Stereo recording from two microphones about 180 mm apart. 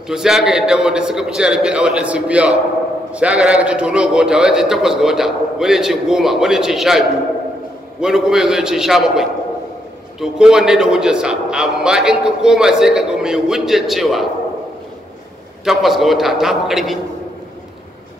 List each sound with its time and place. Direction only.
0.1 s a man's voice: 5° right (ahead or behind)
15.6 s a man's voice: centre (ahead or behind)